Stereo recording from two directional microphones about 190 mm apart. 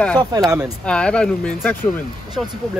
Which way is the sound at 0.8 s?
5° left (ahead or behind).